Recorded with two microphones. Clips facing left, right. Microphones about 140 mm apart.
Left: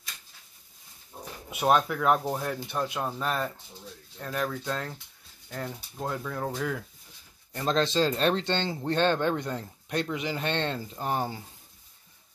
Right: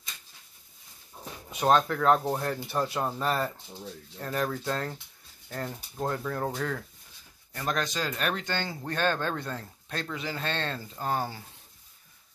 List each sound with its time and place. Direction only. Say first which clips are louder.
1.5 s speech: even; 10° left (ahead or behind)
7.5 s speech: left 5 dB; 25° left (ahead or behind)